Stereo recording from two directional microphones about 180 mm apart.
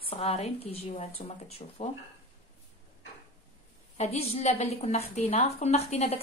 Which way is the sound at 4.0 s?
35° left (ahead or behind).